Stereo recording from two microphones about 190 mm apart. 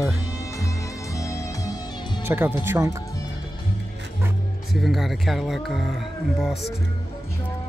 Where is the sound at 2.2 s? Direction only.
10° right (ahead or behind).